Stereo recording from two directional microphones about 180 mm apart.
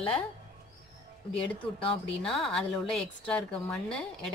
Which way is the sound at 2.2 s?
5° left (ahead or behind).